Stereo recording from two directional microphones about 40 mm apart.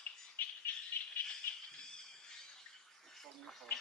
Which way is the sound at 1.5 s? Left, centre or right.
Left.